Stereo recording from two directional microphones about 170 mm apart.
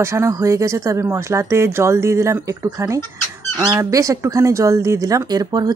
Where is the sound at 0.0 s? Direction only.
15° right (ahead or behind).